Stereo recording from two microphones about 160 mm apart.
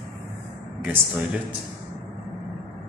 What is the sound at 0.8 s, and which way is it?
Speech, 10° right (ahead or behind).